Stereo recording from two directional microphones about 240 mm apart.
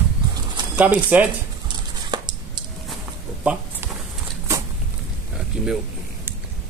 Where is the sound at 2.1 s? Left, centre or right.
Centre.